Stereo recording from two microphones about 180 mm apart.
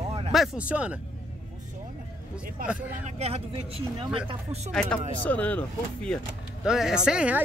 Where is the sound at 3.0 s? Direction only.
35° right (ahead or behind).